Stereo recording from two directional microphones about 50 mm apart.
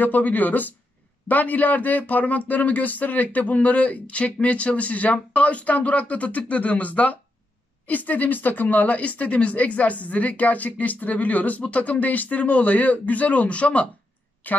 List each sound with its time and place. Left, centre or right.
0.0 s speech: left